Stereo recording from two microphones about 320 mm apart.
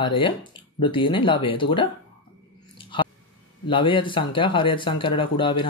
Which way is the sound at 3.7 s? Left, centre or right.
Centre.